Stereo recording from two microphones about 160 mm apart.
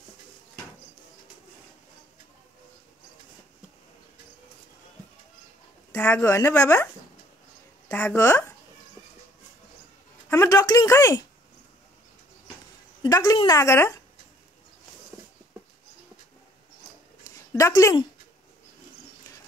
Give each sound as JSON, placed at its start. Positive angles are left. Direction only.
{"t": 5.9, "sound": "speech", "side_deg": 15}
{"t": 7.9, "sound": "speech", "side_deg": 10}
{"t": 10.3, "sound": "speech", "side_deg": 20}
{"t": 13.0, "sound": "speech", "side_deg": 25}
{"t": 17.2, "sound": "a sound", "side_deg": 20}